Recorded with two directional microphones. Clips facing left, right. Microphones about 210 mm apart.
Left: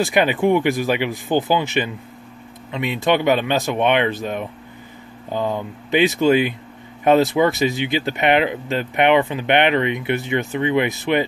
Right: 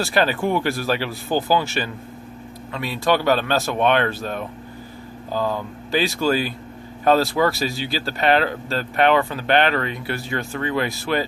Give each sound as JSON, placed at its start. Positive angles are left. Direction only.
{"t": 0.0, "sound": "speech", "side_deg": 15}